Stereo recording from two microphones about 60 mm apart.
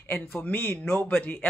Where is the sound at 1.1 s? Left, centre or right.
Left.